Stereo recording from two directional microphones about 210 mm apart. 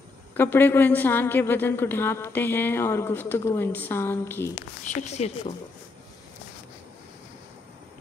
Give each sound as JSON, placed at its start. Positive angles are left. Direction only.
{"t": 0.4, "sound": "a woman's voice", "side_deg": 10}
{"t": 5.0, "sound": "a woman's voice", "side_deg": 30}